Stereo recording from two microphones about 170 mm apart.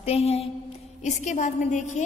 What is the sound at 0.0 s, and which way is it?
A woman's voice, 35° left (ahead or behind).